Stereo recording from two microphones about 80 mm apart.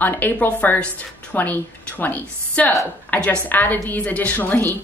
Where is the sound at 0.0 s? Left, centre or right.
Left.